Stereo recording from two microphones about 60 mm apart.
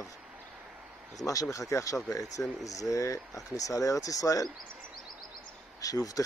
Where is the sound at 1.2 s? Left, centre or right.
Left.